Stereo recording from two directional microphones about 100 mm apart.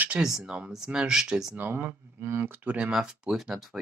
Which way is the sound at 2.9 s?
5° right (ahead or behind).